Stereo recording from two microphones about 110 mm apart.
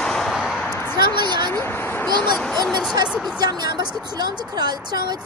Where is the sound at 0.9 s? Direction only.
40° right (ahead or behind).